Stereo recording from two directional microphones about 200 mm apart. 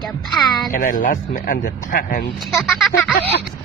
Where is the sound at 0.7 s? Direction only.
40° left (ahead or behind).